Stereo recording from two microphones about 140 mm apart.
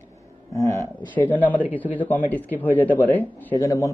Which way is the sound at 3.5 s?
20° left (ahead or behind).